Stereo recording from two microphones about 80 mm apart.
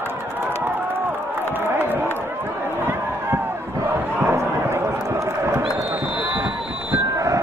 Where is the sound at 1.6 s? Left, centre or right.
Right.